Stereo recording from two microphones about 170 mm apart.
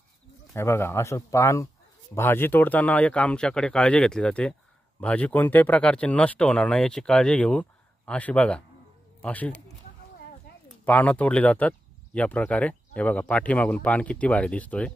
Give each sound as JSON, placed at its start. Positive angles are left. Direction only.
{"t": 0.5, "sound": "speech", "side_deg": 15}
{"t": 10.9, "sound": "speech", "side_deg": 10}